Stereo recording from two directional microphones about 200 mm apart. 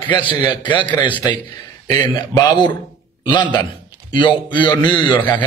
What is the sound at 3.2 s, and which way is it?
A man's voice, 20° left (ahead or behind).